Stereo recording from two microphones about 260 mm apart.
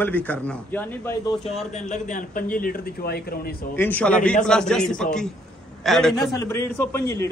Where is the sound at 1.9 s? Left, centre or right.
Left.